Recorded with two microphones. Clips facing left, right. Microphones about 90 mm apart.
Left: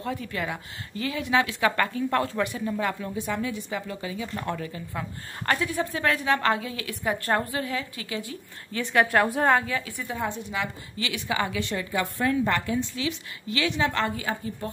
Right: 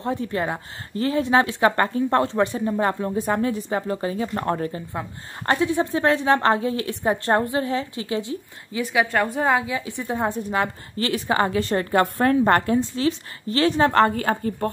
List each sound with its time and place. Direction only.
0.0 s a woman's voice: 30° right (ahead or behind)
4.9 s a woman's voice: 25° right (ahead or behind)
8.7 s a woman's voice: 5° right (ahead or behind)
9.8 s a woman's voice: 25° right (ahead or behind)
10.0 s a woman's voice: 40° right (ahead or behind)